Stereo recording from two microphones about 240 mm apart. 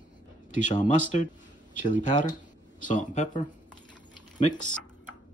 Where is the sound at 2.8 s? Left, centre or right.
Left.